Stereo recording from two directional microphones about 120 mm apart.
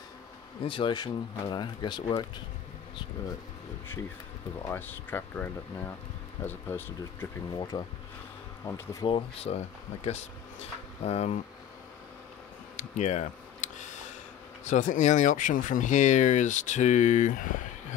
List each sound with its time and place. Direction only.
0.7 s speech: 45° left (ahead or behind)
4.6 s speech: 15° left (ahead or behind)
7.5 s speech: 35° left (ahead or behind)
8.6 s speech: 20° left (ahead or behind)
9.0 s speech: 50° left (ahead or behind)
12.7 s a sound: 80° left
14.6 s speech: 85° left